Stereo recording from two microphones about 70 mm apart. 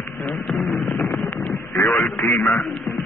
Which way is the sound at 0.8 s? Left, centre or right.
Left.